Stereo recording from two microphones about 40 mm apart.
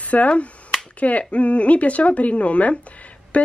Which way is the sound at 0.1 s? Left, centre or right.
Left.